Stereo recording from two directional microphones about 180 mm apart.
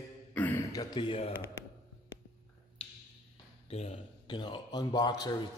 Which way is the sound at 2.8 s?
30° left (ahead or behind).